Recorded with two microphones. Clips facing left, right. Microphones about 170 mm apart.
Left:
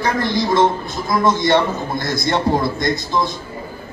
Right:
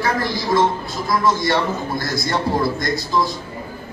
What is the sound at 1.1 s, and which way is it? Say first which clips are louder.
A man's voice: left 3 dB; 20° left (ahead or behind).